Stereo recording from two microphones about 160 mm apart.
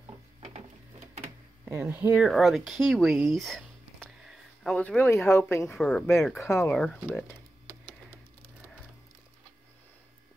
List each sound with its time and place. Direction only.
0.4 s printer: 45° right (ahead or behind)
1.7 s speech: 15° right (ahead or behind)
2.2 s speech: centre (ahead or behind); by 5.7 s 15° left (ahead or behind)
5.7 s speech: 5° left (ahead or behind)
6.3 s speech: 15° left (ahead or behind)
6.7 s speech: 5° left (ahead or behind)